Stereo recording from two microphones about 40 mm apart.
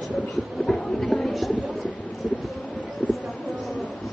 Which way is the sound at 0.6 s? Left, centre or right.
Centre.